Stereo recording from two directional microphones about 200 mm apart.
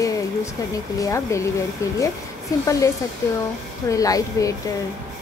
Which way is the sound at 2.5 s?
15° left (ahead or behind).